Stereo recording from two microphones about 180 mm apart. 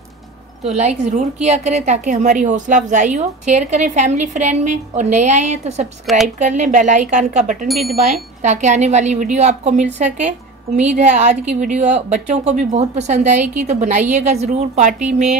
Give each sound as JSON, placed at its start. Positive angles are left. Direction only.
{"t": 0.7, "sound": "a woman's voice", "side_deg": -40}
{"t": 7.6, "sound": "speech", "side_deg": 0}
{"t": 8.4, "sound": "a woman's voice", "side_deg": -40}